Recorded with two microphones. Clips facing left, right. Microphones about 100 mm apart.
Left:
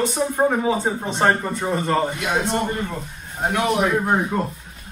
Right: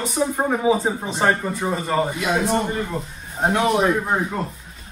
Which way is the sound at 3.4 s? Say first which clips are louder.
Right 2 dB; 30° right (ahead or behind).